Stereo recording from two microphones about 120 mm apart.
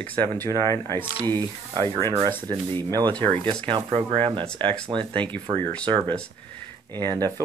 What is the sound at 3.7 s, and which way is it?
Speech, 50° right (ahead or behind).